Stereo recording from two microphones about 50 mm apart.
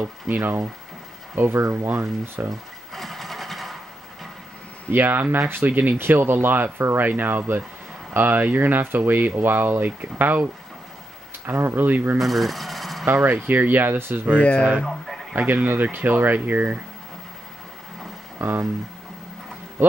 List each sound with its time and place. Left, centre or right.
0.3 s speech: right
1.5 s speech: right
2.9 s sewing machine: centre
4.9 s speech: right
12.2 s speech: centre
13.0 s speech: right
14.8 s a sound: centre
15.3 s speech: right
18.4 s speech: right